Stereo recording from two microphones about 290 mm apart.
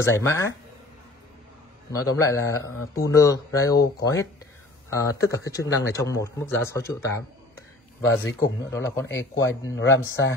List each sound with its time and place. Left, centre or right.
0.2 s speech: centre
1.9 s speech: centre
8.0 s speech: left
8.4 s speech: centre
9.0 s speech: left